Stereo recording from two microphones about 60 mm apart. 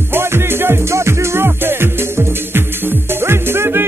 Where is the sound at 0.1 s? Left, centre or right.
Right.